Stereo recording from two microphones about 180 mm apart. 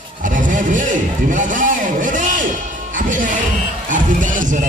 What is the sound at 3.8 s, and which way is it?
Music, 45° right (ahead or behind).